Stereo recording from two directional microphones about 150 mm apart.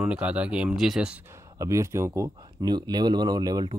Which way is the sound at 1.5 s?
20° right (ahead or behind).